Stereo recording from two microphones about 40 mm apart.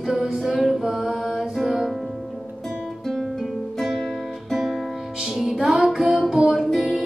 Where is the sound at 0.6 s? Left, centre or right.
Centre.